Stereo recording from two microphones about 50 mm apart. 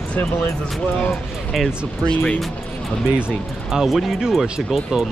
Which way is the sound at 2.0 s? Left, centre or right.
Left.